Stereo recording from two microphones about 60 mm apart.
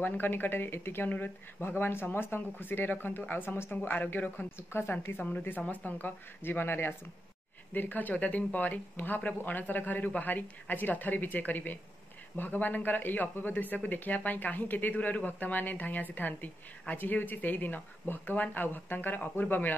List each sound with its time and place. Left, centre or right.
0.0 s speech: left
3.7 s speech: left
4.6 s speech: left
5.2 s speech: left